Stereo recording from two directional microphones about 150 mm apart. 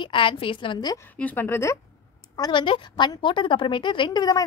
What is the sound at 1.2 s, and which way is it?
Speech, 15° left (ahead or behind).